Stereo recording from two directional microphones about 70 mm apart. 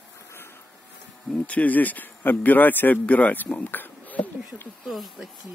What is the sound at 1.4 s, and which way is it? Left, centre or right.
A man's voice, left.